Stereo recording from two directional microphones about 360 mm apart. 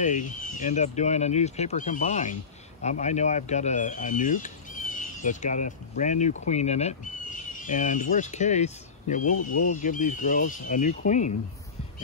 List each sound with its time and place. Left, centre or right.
0.0 s speech: left